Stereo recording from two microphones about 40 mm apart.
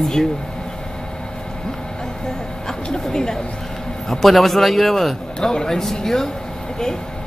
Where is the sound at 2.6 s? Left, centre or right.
Centre.